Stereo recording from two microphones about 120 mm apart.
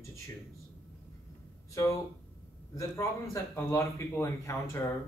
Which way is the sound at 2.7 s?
25° left (ahead or behind).